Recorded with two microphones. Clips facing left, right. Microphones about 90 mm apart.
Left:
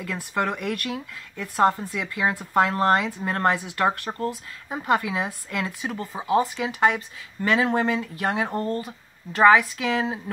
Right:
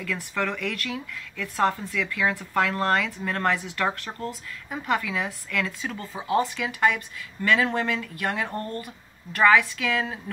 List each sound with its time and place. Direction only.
0.0 s speech: 20° left (ahead or behind)
6.4 s speech: 20° left (ahead or behind)